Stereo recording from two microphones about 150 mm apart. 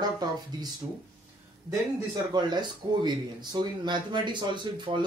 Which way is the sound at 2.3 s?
30° right (ahead or behind).